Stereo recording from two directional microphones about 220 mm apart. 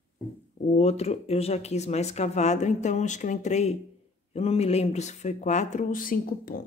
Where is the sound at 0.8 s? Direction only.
30° left (ahead or behind).